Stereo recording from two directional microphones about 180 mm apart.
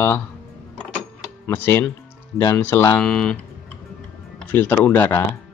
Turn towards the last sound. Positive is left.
turn(degrees=10)  # may be behind; listen again after turning